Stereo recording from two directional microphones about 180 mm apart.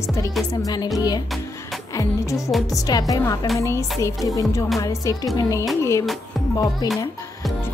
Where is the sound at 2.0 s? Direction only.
15° left (ahead or behind).